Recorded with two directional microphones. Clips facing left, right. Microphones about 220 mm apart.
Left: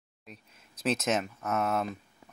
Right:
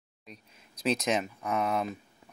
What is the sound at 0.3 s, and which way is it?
Speech, 5° left (ahead or behind).